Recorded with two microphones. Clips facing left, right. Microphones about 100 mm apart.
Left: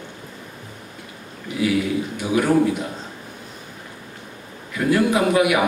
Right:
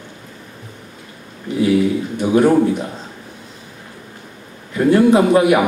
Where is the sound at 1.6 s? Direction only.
30° right (ahead or behind).